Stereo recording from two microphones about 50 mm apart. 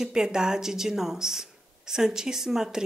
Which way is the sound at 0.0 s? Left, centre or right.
Centre.